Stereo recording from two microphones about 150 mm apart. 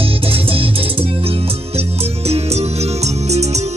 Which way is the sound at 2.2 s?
45° right (ahead or behind).